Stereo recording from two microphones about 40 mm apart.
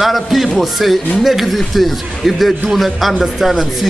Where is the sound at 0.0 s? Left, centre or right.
Centre.